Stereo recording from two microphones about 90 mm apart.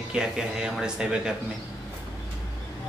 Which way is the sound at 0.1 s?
10° right (ahead or behind).